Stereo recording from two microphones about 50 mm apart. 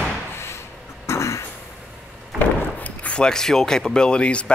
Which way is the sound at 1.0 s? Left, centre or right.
Left.